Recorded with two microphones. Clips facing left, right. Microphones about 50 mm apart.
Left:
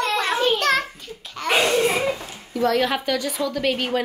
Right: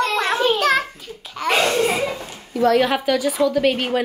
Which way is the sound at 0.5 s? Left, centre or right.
Centre.